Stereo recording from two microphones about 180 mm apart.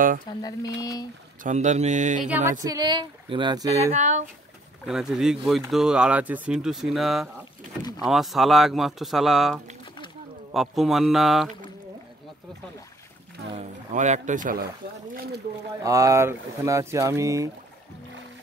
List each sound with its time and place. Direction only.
0.7 s speech: 20° left (ahead or behind)
1.4 s speech: 40° right (ahead or behind)
2.2 s speech: 10° right (ahead or behind)
2.6 s speech: 20° right (ahead or behind)
3.9 s speech: 40° right (ahead or behind)
4.8 s speech: 5° right (ahead or behind)
13.5 s speech: 40° right (ahead or behind)
15.8 s speech: 20° right (ahead or behind)